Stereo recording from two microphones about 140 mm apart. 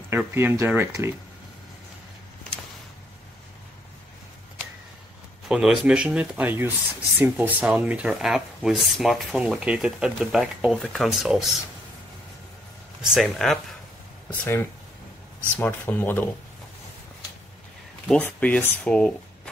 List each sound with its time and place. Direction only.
0.1 s speech: 15° right (ahead or behind)
5.5 s speech: 5° right (ahead or behind)
13.0 s speech: centre (ahead or behind)
14.3 s speech: 15° left (ahead or behind)
18.2 s speech: 15° left (ahead or behind)